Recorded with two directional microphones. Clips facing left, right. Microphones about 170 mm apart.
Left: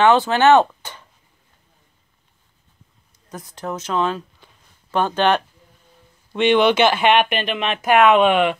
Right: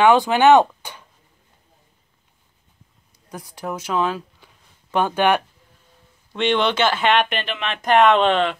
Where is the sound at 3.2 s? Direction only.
10° right (ahead or behind).